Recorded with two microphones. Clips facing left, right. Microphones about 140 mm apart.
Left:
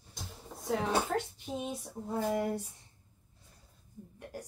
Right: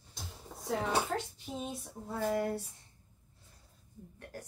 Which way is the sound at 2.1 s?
20° left (ahead or behind).